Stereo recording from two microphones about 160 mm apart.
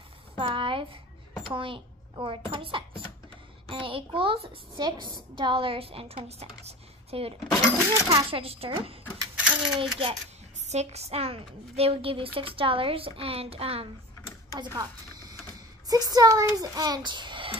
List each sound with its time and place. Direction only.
0.4 s a sound: 35° right (ahead or behind)
1.5 s a child's voice: 30° right (ahead or behind)
9.4 s coin: 5° right (ahead or behind)
9.8 s a woman's voice: 35° right (ahead or behind)
14.5 s a child's voice: 25° right (ahead or behind)